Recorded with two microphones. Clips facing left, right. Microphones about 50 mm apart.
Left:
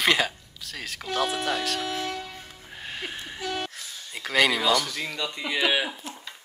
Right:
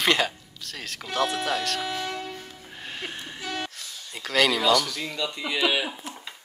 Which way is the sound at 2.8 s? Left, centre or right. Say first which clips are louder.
Even; centre.